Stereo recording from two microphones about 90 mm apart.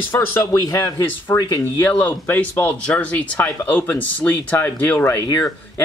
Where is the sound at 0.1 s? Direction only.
25° left (ahead or behind).